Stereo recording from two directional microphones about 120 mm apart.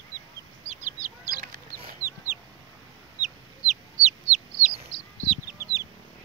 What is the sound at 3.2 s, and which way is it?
Chicken, 70° right (ahead or behind).